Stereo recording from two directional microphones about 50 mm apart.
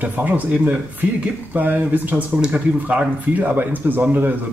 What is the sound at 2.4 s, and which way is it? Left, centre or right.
Speech, right.